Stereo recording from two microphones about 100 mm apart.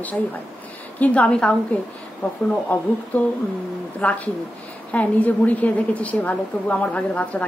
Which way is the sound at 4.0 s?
15° left (ahead or behind).